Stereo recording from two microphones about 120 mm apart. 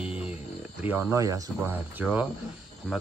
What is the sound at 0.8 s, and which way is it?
Speech, 20° right (ahead or behind).